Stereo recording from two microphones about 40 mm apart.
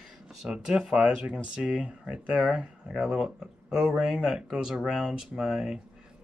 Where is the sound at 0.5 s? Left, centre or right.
Centre.